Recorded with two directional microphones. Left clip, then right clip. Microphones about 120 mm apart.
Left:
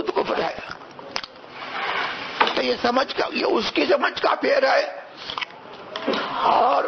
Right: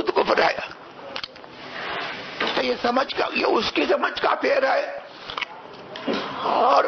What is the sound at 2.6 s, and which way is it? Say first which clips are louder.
Speech: left 1 dB; 15° left (ahead or behind).